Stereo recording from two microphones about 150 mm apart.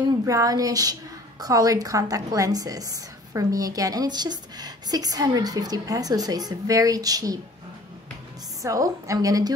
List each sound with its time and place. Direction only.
0.2 s a woman's voice: 20° right (ahead or behind)
8.6 s a woman's voice: 20° right (ahead or behind)